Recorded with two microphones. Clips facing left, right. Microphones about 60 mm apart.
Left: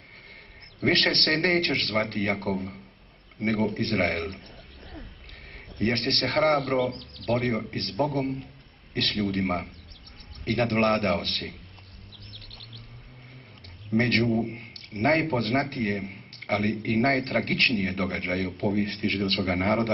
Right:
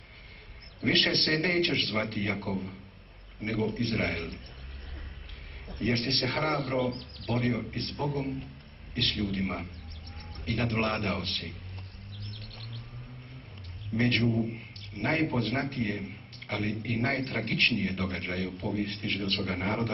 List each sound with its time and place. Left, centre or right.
0.8 s a man's voice: left
5.8 s a man's voice: left
13.9 s a man's voice: left